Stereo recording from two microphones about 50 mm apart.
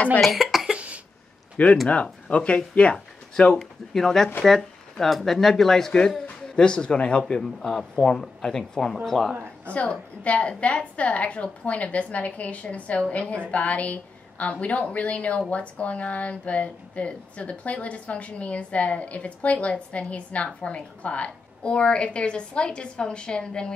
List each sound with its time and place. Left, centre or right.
0.2 s speech: centre
0.7 s cough: right
1.6 s speech: left
3.9 s a man's voice: centre
9.8 s speech: left